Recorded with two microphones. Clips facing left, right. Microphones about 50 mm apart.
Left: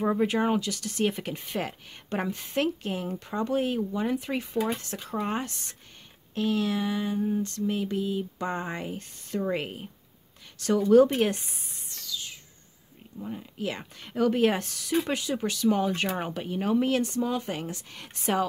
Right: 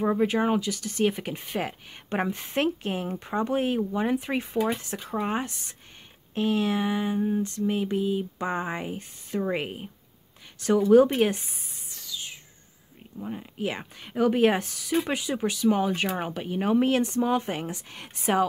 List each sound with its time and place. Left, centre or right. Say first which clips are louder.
0.0 s a woman's voice: right 1 dB; centre
2.0 s a sound: right 3 dB; right
4.6 s a woman's voice: right 2 dB; centre
6.3 s a sound: right 2 dB; right
10.6 s a woman's voice: right 1 dB; centre
11.3 s speech: even; centre
12.0 s music: even; right
13.2 s a woman's voice: right 2 dB; right
16.7 s a sound: right 2 dB; right